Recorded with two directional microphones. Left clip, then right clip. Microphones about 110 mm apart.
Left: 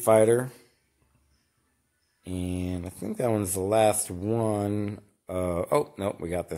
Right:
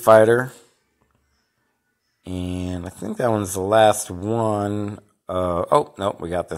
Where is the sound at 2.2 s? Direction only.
15° right (ahead or behind).